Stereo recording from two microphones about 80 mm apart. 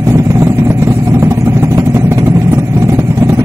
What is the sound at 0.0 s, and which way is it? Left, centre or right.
Vehicle, right.